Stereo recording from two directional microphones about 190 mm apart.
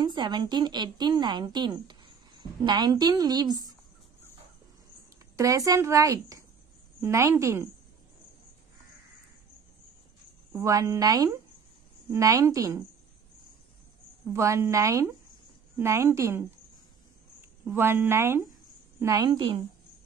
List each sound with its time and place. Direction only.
0.0 s a woman's voice: 25° right (ahead or behind)
5.3 s speech: 15° right (ahead or behind)
10.5 s a woman's voice: 15° right (ahead or behind)
14.2 s a woman's voice: 15° right (ahead or behind)